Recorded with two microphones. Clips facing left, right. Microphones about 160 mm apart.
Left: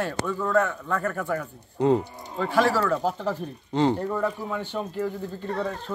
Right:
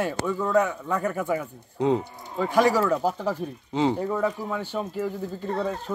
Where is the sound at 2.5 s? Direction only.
15° right (ahead or behind).